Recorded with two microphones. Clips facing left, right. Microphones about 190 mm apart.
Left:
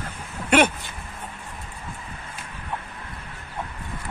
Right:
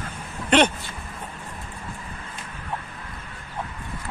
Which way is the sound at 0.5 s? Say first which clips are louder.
Even; 10° left (ahead or behind).